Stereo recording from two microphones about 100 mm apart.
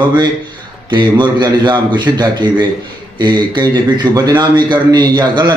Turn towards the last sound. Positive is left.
turn(degrees=-45)  # may be behind; listen again after turning